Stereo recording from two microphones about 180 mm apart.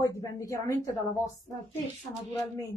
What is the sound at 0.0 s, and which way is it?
Speech, 15° left (ahead or behind).